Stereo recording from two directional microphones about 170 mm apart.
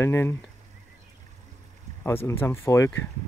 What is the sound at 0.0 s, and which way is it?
Speech, 15° left (ahead or behind).